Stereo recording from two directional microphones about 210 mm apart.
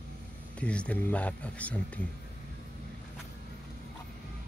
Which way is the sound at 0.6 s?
5° left (ahead or behind).